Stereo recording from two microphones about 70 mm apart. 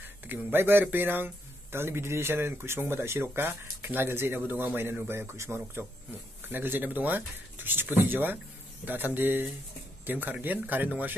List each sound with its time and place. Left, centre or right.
0.3 s speech: right